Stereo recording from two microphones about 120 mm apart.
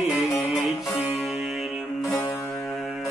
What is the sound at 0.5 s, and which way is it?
Music, centre (ahead or behind).